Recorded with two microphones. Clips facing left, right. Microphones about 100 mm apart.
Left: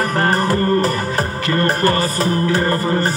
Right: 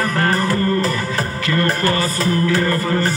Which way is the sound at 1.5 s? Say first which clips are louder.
Left 2 dB; 30° left (ahead or behind).